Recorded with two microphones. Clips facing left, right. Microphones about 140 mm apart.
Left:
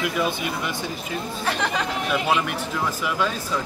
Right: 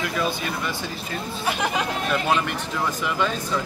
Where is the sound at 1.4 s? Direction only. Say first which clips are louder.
Right 1 dB; 10° right (ahead or behind).